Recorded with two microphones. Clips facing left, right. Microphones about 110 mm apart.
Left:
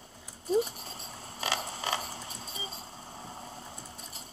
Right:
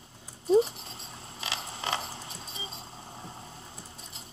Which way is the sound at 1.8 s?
35° right (ahead or behind).